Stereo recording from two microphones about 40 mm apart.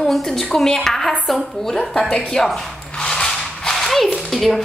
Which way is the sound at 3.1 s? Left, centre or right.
Centre.